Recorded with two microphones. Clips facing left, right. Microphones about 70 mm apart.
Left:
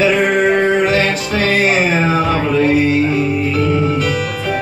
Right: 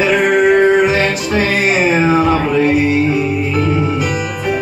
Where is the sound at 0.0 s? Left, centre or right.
Centre.